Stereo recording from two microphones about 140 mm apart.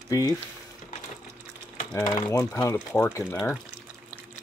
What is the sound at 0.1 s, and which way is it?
Speech, 25° left (ahead or behind).